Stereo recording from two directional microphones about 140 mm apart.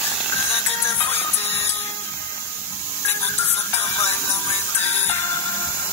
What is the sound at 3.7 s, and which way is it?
Music, 20° left (ahead or behind).